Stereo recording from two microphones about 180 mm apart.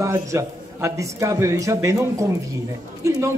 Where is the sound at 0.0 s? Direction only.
15° right (ahead or behind).